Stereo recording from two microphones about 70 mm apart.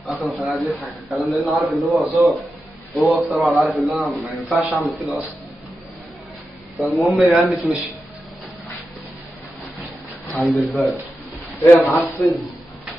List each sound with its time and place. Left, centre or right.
0.0 s a man's voice: centre
6.8 s a man's voice: centre
10.4 s a man's voice: centre
11.6 s a man's voice: left
12.2 s a sound: centre